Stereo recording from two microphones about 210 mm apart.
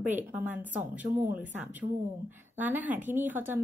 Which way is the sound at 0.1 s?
10° right (ahead or behind).